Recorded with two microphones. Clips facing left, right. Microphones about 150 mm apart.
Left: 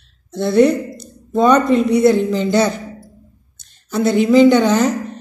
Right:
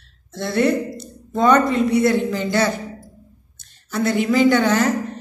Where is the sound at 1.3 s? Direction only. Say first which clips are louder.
Left 3 dB; 15° left (ahead or behind).